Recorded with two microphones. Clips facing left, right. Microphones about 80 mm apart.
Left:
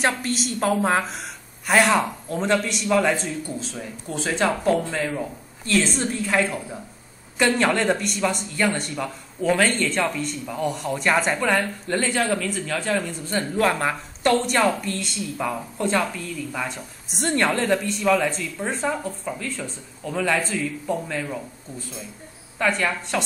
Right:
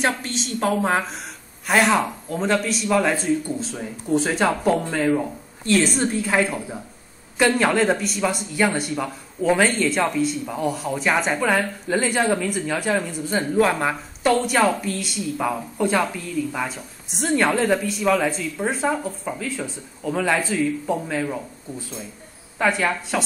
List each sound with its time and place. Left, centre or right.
0.0 s speech: centre
3.7 s speech: centre
5.8 s a woman's voice: centre